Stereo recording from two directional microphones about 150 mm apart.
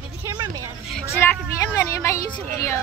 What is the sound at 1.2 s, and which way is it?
A woman's voice, 20° left (ahead or behind).